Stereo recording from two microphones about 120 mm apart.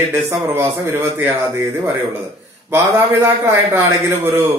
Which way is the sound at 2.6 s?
15° right (ahead or behind).